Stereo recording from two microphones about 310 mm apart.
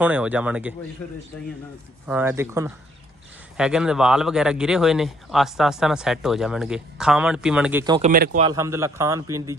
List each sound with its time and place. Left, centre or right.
0.0 s speech: centre
2.0 s a man's voice: centre
8.1 s speech: right
8.5 s a man's voice: centre